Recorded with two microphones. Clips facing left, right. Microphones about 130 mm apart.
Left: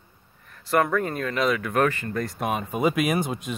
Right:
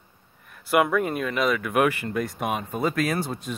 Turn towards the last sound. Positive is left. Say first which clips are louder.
# left 2 dB
turn(degrees=15)  # may be behind; listen again after turning